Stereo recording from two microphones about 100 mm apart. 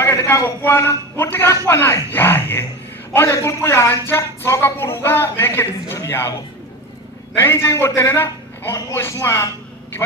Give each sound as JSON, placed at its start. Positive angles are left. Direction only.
{"t": 0.0, "sound": "a man's voice", "side_deg": 30}
{"t": 7.3, "sound": "speech", "side_deg": 25}